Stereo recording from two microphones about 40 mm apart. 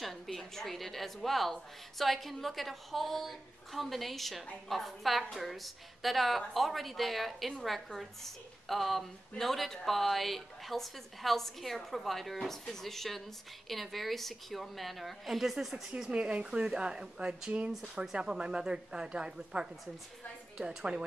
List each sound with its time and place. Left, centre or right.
0.0 s a woman's voice: centre
16.1 s speech: right